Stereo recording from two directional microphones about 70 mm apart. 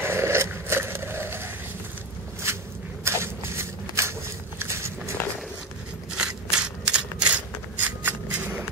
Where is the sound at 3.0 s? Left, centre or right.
Right.